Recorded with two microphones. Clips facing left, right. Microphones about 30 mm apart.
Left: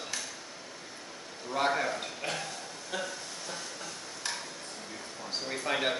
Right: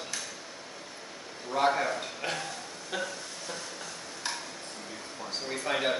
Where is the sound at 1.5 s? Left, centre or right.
Centre.